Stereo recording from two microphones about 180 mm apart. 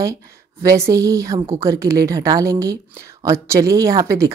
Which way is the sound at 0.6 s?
15° right (ahead or behind).